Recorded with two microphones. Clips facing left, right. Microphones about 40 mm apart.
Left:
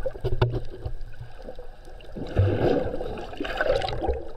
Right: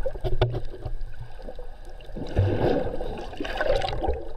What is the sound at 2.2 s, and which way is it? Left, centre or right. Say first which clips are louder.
Boat: left 1 dB; centre.